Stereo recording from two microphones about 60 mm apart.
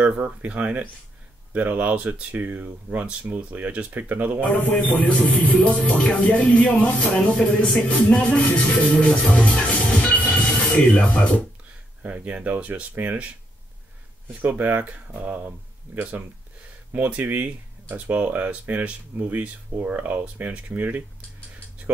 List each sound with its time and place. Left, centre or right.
0.0 s speech: right
4.4 s speech: left
8.1 s music: left
10.9 s speech: left
12.0 s speech: right
14.4 s speech: right